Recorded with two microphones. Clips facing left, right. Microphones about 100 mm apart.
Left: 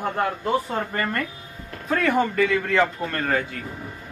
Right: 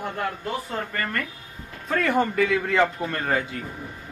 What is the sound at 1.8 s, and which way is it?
Speech, centre (ahead or behind).